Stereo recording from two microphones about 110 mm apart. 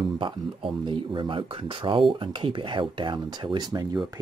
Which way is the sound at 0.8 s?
50° right (ahead or behind).